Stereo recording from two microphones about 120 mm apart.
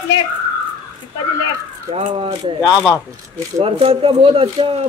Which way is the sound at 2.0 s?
55° right (ahead or behind).